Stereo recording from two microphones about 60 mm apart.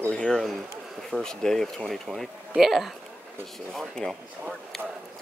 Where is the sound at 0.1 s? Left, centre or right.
Centre.